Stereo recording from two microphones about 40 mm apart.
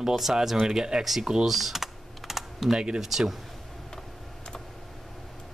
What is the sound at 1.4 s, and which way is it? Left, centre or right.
Typing, centre.